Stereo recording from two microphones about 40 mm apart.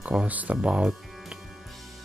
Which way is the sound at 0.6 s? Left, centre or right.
Right.